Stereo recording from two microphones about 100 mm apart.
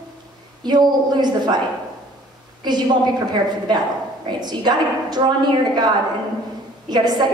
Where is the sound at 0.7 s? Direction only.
45° right (ahead or behind).